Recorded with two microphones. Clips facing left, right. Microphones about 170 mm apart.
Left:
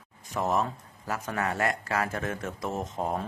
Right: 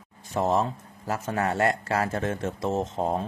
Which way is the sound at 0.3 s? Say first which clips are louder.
Right 3 dB; 30° right (ahead or behind).